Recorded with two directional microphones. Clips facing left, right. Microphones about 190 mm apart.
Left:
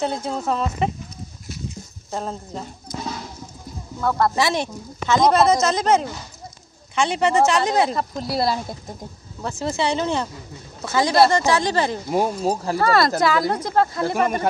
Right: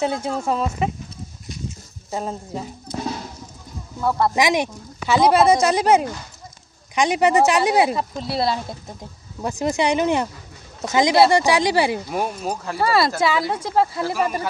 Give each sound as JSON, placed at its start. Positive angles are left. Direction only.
{"t": 0.0, "sound": "speech", "side_deg": -5}
{"t": 2.0, "sound": "speech", "side_deg": -5}
{"t": 4.0, "sound": "speech", "side_deg": -10}
{"t": 9.4, "sound": "speech", "side_deg": -15}
{"t": 12.1, "sound": "speech", "side_deg": 25}
{"t": 12.7, "sound": "speech", "side_deg": -5}